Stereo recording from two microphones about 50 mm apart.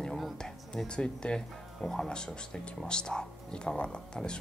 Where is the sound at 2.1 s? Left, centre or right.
Centre.